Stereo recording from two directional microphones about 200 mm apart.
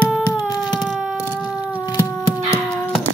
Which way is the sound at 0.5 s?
20° left (ahead or behind).